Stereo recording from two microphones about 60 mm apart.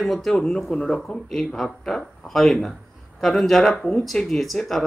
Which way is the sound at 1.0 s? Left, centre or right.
Centre.